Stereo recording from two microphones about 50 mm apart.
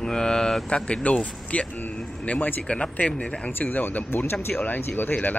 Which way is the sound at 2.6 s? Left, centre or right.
Left.